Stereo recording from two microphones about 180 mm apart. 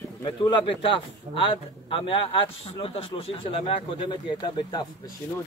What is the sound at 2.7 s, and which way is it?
Speech, 30° left (ahead or behind).